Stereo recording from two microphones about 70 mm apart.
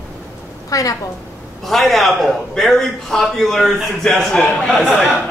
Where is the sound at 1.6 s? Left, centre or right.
Centre.